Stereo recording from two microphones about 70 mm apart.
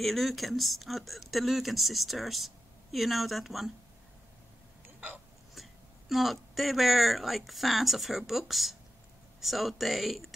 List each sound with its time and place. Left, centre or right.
0.0 s speech: centre
4.8 s hiccup: right
5.5 s speech: centre